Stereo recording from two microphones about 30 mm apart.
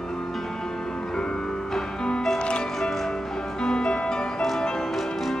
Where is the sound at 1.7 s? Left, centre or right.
Centre.